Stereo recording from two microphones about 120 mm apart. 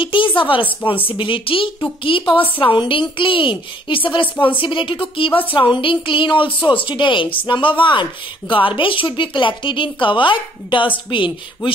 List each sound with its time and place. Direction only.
0.0 s a woman's voice: 45° left (ahead or behind)